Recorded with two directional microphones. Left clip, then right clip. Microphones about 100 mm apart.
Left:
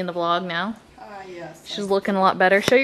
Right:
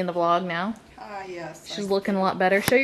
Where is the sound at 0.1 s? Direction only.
20° left (ahead or behind).